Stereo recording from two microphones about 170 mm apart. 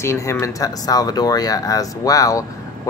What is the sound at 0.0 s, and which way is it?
Speech, 15° left (ahead or behind).